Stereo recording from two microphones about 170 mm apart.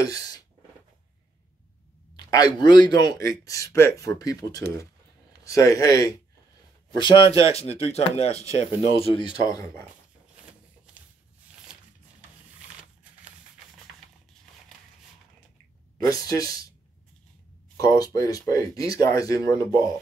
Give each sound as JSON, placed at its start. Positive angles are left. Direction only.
{"t": 0.0, "sound": "speech", "side_deg": 20}
{"t": 2.1, "sound": "speech", "side_deg": 25}
{"t": 16.1, "sound": "speech", "side_deg": 20}
{"t": 17.7, "sound": "speech", "side_deg": 20}